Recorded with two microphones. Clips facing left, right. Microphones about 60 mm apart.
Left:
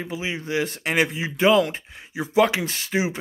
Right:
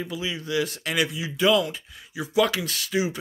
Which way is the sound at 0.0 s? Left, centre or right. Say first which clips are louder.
Left 2 dB; left.